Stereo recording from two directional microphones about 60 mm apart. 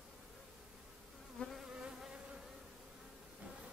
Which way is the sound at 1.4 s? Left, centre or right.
Centre.